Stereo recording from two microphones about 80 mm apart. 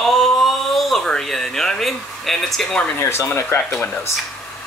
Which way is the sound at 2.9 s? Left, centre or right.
Left.